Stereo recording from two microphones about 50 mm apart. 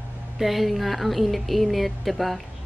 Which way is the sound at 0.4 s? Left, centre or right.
Centre.